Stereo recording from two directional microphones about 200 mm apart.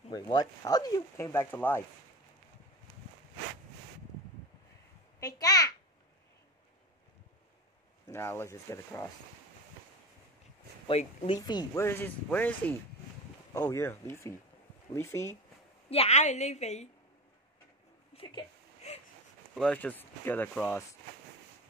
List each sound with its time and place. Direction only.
0.1 s speech: 20° left (ahead or behind)
5.2 s a child's voice: 20° left (ahead or behind)
8.1 s speech: 10° left (ahead or behind)
10.9 s speech: 30° left (ahead or behind); by 15.3 s 15° left (ahead or behind)
15.9 s a woman's voice: 30° left (ahead or behind)
18.1 s whimper: 25° left (ahead or behind)
19.5 s speech: 5° left (ahead or behind)